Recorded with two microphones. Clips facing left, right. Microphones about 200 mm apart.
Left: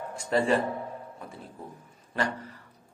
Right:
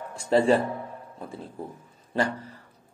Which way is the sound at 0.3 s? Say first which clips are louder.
Right 4 dB; 30° right (ahead or behind).